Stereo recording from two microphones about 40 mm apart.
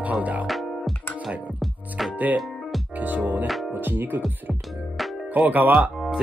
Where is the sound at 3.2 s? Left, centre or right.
Right.